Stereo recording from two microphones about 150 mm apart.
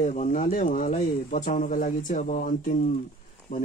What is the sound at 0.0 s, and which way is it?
Speech, 55° left (ahead or behind).